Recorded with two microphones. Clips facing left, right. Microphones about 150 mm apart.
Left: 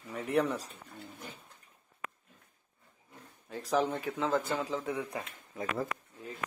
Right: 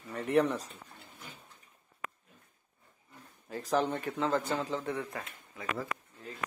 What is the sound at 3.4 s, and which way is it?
A man's voice, centre (ahead or behind).